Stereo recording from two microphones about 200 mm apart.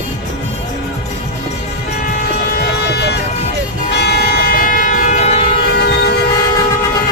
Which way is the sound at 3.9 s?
55° left (ahead or behind).